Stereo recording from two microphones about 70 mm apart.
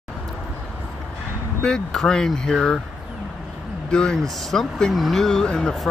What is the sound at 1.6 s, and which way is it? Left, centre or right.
Speech, centre.